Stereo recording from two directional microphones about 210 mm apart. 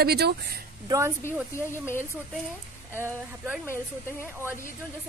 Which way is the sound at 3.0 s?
10° right (ahead or behind).